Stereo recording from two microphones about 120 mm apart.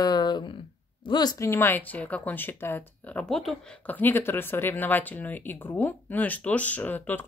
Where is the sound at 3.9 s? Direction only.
15° left (ahead or behind).